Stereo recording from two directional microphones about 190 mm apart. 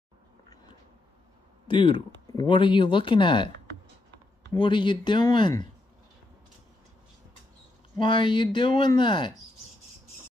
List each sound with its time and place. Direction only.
1.7 s speech: 25° left (ahead or behind)
4.5 s speech: 25° left (ahead or behind)
8.0 s speech: 25° left (ahead or behind)